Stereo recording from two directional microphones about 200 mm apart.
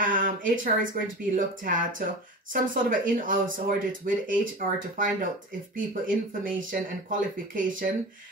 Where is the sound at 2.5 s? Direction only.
45° right (ahead or behind).